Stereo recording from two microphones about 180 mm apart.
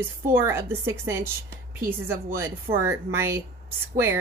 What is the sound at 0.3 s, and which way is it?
Speech, 15° right (ahead or behind).